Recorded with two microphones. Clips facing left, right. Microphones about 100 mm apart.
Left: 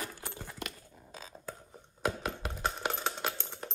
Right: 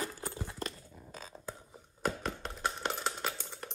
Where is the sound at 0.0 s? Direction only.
35° right (ahead or behind).